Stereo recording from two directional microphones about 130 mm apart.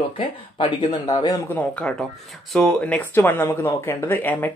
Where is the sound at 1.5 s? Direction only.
10° left (ahead or behind).